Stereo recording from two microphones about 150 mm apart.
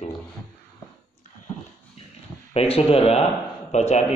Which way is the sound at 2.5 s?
40° left (ahead or behind).